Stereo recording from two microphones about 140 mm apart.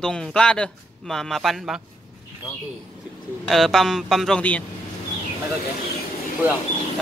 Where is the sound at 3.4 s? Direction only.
Centre (ahead or behind).